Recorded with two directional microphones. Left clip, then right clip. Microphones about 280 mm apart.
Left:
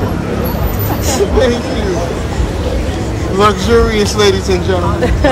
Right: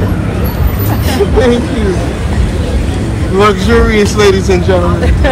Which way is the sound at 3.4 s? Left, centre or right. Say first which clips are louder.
Right 1 dB; centre.